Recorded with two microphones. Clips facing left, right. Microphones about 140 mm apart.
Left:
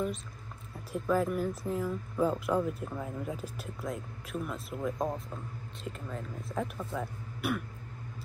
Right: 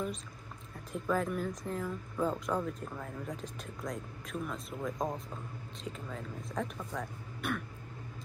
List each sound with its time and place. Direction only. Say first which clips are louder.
0.9 s speech: left 3 dB; 5° left (ahead or behind)